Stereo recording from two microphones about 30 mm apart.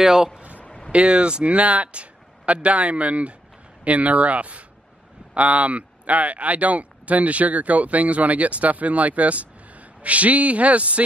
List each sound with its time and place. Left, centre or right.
0.0 s a man's voice: centre
0.7 s a sound: left
0.9 s speech: right